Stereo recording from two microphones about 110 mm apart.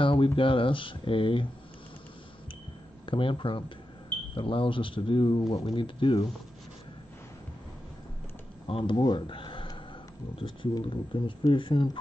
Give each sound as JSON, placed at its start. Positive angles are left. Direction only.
{"t": 0.0, "sound": "speech", "side_deg": 50}
{"t": 3.1, "sound": "speech", "side_deg": 50}
{"t": 8.6, "sound": "speech", "side_deg": 55}
{"t": 8.9, "sound": "speech", "side_deg": 40}